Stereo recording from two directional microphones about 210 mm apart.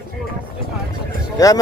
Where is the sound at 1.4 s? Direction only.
15° left (ahead or behind).